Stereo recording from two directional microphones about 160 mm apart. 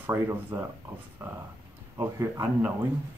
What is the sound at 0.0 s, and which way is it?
Speech, 15° right (ahead or behind).